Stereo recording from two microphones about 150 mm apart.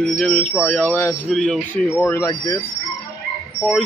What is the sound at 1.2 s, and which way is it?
Speech, 5° left (ahead or behind).